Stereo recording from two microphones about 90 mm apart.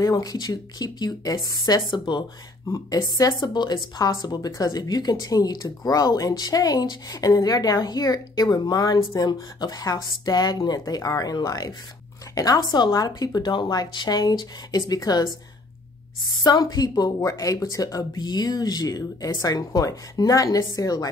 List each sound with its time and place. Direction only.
0.0 s speech: 45° left (ahead or behind)
1.8 s speech: 60° left (ahead or behind)
2.7 s speech: 40° left (ahead or behind)
16.4 s speech: 45° left (ahead or behind)